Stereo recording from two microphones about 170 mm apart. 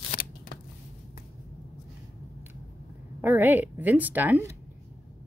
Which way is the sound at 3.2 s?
10° right (ahead or behind).